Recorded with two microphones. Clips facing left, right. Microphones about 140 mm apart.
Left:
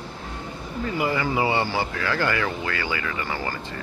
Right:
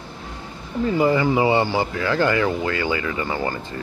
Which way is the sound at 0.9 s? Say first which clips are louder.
Right 6 dB; 25° right (ahead or behind).